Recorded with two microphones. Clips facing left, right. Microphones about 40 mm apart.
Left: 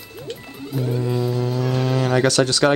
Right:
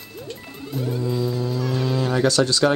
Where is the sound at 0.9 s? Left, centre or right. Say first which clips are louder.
Left 1 dB; left.